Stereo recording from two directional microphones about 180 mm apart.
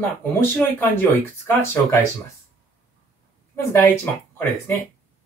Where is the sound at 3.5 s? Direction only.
15° left (ahead or behind).